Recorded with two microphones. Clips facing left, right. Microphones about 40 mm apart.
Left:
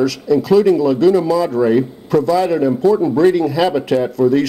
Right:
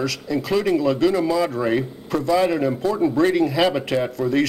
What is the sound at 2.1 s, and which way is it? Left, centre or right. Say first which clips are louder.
Speech: left 5 dB; centre.